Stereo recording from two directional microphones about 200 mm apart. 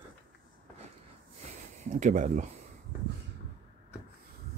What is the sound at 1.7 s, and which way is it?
Speech, 35° right (ahead or behind).